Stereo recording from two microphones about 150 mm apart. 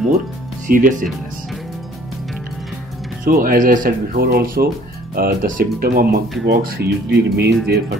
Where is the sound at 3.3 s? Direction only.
70° right (ahead or behind).